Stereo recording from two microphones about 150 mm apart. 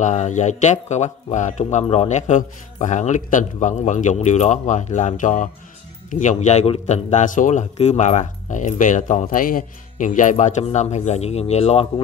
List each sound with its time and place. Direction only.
0.0 s a man's voice: 55° left (ahead or behind)
9.3 s speech: 70° left (ahead or behind); by 11.9 s 45° left (ahead or behind)